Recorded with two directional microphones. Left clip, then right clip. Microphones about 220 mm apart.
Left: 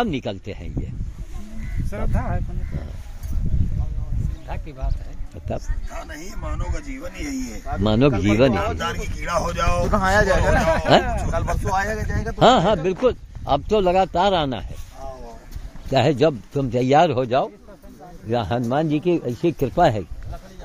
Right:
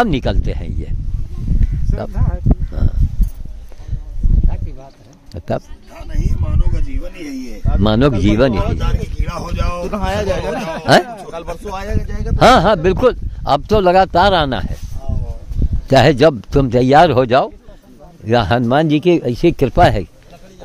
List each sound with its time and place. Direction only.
0.0 s speech: 35° right (ahead or behind)
1.9 s speech: 40° left (ahead or behind)
5.9 s speech: 20° left (ahead or behind)
7.8 s a man's voice: 30° right (ahead or behind)
8.7 s speech: 20° left (ahead or behind)
9.8 s speech: 10° right (ahead or behind); by 12.4 s 10° left (ahead or behind)
12.4 s speech: 35° right (ahead or behind)
15.9 s speech: 40° right (ahead or behind)